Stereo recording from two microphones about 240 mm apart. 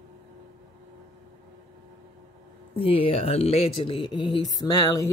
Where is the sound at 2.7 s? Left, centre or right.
Left.